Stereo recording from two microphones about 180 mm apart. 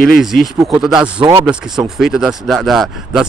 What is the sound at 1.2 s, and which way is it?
Speech, 20° right (ahead or behind).